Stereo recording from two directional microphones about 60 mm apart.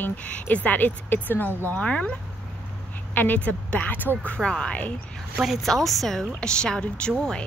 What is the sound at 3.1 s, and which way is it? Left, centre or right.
Speech, left.